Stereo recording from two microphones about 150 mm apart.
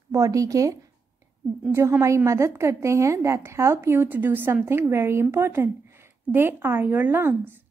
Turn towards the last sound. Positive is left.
turn(degrees=-15)  # may be behind; listen again after turning